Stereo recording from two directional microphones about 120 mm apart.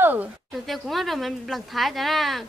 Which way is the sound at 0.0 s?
15° right (ahead or behind).